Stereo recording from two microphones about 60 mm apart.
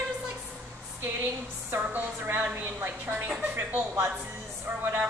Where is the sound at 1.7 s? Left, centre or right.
Right.